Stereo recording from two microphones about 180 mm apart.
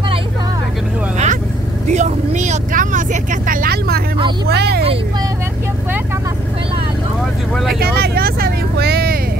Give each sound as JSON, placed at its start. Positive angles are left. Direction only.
{"t": 1.1, "sound": "vehicle", "side_deg": -40}
{"t": 4.5, "sound": "speech", "side_deg": -65}
{"t": 7.8, "sound": "vehicle", "side_deg": -60}